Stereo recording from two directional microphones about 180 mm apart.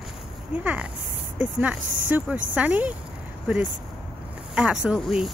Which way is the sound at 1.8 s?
90° right.